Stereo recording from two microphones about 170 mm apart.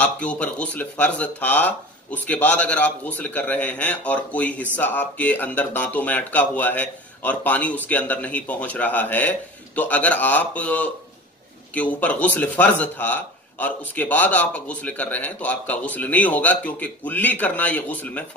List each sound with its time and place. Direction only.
0.0 s speech: 5° left (ahead or behind)